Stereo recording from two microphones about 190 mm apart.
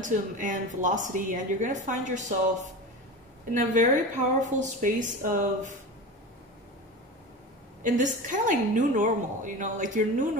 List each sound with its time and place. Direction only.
0.0 s a woman's voice: 40° right (ahead or behind)
3.5 s speech: 40° right (ahead or behind)
7.8 s a woman's voice: 40° right (ahead or behind)